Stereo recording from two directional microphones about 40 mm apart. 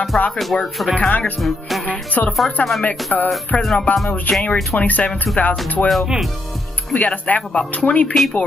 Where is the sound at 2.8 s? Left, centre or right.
Left.